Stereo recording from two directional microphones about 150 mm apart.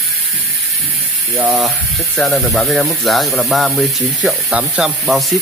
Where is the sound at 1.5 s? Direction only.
Centre (ahead or behind).